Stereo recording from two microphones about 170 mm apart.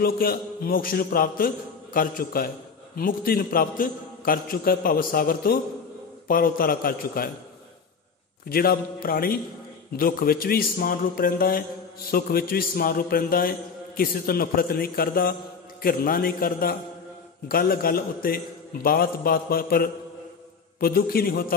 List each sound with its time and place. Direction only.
0.0 s a man's voice: 60° left (ahead or behind)
8.5 s a man's voice: 60° left (ahead or behind)